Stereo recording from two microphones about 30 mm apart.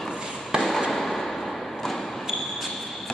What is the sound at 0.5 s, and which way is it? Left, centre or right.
Fireworks, right.